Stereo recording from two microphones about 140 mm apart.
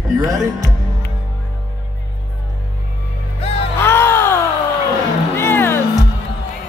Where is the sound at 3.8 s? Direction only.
20° left (ahead or behind).